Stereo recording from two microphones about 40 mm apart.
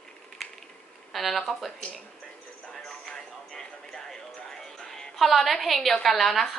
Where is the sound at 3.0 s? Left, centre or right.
Centre.